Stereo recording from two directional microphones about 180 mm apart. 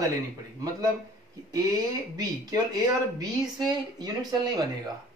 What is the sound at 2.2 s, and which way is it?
Speech, 20° right (ahead or behind).